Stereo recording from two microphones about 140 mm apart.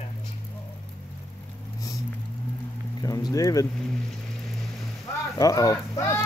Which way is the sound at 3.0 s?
25° left (ahead or behind).